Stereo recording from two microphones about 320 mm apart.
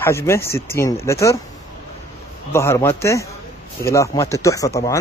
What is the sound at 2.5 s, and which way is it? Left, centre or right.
Speech, centre.